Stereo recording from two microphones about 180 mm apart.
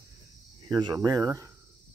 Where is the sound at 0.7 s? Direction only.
20° right (ahead or behind).